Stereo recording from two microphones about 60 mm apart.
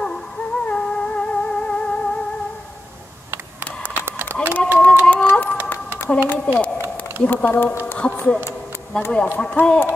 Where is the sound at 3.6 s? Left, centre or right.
Right.